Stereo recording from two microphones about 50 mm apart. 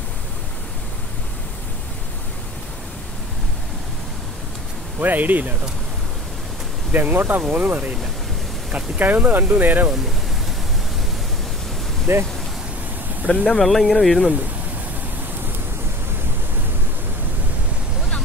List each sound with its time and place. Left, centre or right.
5.0 s speech: right
6.9 s speech: right
12.1 s speech: right
13.5 s speech: centre